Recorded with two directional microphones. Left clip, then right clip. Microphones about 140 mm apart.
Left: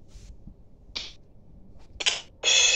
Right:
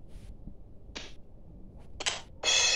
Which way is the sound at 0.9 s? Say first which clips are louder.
Left 8 dB; 15° right (ahead or behind).